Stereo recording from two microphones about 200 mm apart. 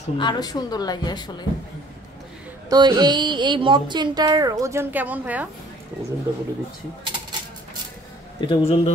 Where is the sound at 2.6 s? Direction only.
20° right (ahead or behind).